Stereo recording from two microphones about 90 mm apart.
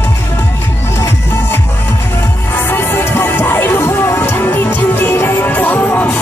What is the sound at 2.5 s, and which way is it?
Music, 25° left (ahead or behind).